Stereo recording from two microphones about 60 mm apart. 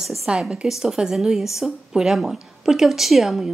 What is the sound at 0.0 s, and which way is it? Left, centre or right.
A woman's voice, centre.